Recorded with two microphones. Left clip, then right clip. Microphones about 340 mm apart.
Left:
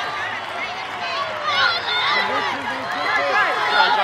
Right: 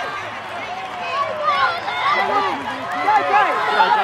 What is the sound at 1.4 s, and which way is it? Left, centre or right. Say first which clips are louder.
Run: left 1 dB; centre.